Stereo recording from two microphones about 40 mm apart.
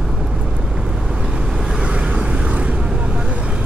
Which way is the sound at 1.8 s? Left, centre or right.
Right.